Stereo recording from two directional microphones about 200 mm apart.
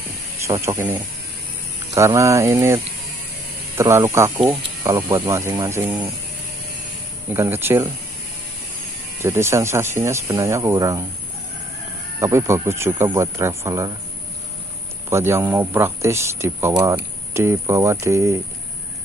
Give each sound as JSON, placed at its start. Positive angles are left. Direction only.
{"t": 0.5, "sound": "speech", "side_deg": -15}
{"t": 7.3, "sound": "speech", "side_deg": -10}
{"t": 9.2, "sound": "speech", "side_deg": -10}
{"t": 12.2, "sound": "speech", "side_deg": -15}
{"t": 15.0, "sound": "speech", "side_deg": -10}